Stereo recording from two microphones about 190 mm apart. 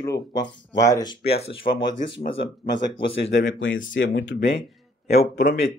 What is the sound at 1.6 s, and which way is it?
Speech, 40° left (ahead or behind).